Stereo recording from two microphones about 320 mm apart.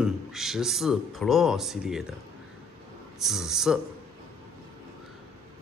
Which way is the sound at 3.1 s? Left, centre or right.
Centre.